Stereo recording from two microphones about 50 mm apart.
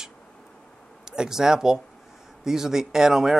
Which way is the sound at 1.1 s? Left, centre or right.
Centre.